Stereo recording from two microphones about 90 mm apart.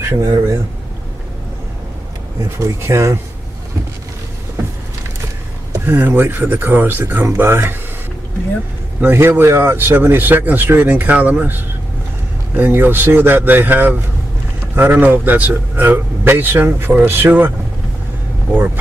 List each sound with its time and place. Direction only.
0.1 s speech: 30° right (ahead or behind)
2.6 s speech: 30° right (ahead or behind)
5.9 s a man's voice: 20° right (ahead or behind)
9.0 s a man's voice: 25° right (ahead or behind)